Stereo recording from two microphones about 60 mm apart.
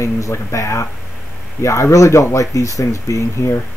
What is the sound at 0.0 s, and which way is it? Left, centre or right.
Speech, left.